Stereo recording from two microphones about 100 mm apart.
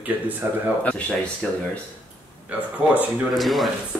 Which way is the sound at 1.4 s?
10° left (ahead or behind).